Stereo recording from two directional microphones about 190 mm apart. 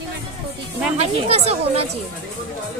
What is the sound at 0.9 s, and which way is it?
Speech, 35° right (ahead or behind).